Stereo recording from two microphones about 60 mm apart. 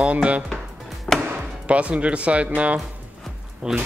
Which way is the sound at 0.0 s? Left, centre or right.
Right.